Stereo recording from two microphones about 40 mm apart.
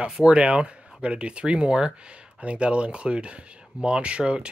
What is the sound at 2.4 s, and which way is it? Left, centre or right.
Speech, right.